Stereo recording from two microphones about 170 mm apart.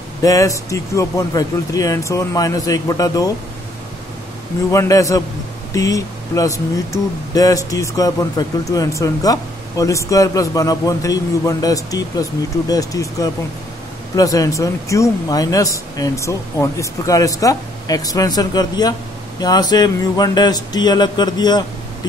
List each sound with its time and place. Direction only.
0.2 s speech: 20° left (ahead or behind)
4.6 s speech: 20° left (ahead or behind)